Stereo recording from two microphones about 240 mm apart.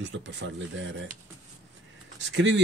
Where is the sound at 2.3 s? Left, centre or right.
Right.